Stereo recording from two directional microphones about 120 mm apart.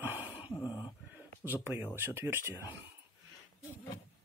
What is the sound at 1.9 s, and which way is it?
Speech, 20° right (ahead or behind).